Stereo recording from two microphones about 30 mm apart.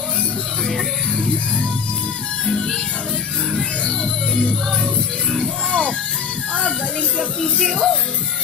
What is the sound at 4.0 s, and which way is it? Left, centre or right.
Music, left.